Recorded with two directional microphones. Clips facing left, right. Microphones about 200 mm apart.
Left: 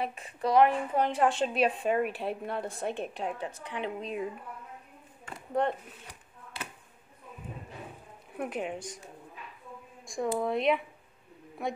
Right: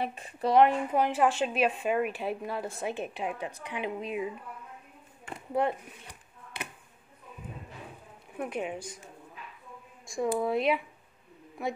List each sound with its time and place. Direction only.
0.1 s speech: 30° right (ahead or behind)
0.9 s a woman's voice: 5° right (ahead or behind)
5.5 s a woman's voice: 10° right (ahead or behind)
6.5 s a sound: 20° right (ahead or behind)
8.4 s a woman's voice: centre (ahead or behind)
10.0 s a woman's voice: centre (ahead or behind)